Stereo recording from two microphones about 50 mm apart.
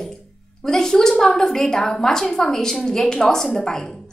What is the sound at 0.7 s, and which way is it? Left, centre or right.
A woman's voice, centre.